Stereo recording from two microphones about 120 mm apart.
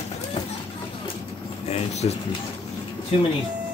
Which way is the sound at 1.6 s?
65° left (ahead or behind).